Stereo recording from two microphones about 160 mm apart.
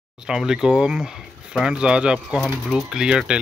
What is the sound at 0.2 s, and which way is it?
Speech, 5° right (ahead or behind).